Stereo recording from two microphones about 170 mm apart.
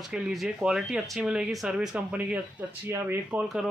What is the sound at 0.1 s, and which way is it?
Speech, centre (ahead or behind).